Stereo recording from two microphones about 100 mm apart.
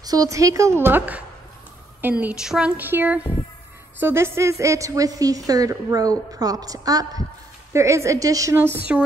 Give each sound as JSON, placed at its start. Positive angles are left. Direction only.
{"t": 0.0, "sound": "a woman's voice", "side_deg": -40}
{"t": 2.8, "sound": "a woman's voice", "side_deg": -20}
{"t": 8.5, "sound": "speech", "side_deg": -20}